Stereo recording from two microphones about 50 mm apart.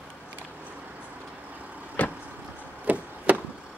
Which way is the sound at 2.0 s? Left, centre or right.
Left.